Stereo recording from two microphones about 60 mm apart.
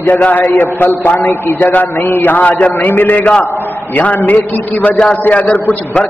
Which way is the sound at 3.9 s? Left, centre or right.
Left.